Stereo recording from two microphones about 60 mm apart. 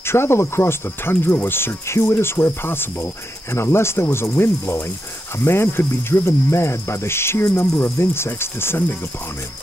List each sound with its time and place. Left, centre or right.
0.0 s cricket: left